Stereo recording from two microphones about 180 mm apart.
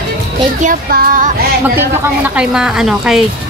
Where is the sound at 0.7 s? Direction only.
45° right (ahead or behind).